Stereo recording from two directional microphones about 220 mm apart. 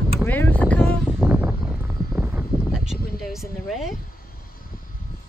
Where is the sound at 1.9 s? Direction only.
Centre (ahead or behind).